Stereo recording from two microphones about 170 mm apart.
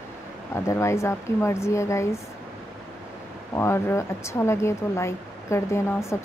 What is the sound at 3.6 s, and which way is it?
Speech, 15° left (ahead or behind).